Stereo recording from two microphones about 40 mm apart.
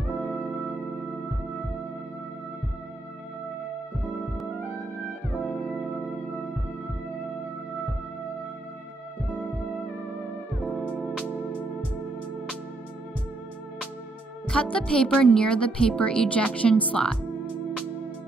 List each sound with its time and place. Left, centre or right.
0.1 s music: right
4.0 s music: centre
5.7 s music: right
10.6 s music: right
14.5 s a woman's voice: left
16.9 s a woman's voice: centre